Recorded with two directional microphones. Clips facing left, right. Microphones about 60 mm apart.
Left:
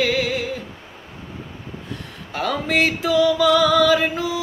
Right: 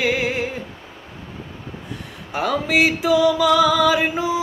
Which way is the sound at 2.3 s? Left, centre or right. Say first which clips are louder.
Right 2 dB; centre.